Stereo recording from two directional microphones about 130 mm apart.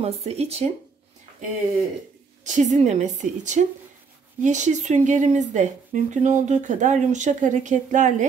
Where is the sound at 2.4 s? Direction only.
65° right (ahead or behind).